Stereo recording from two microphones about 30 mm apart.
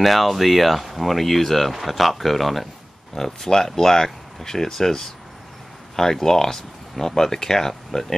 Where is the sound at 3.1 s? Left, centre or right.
Centre.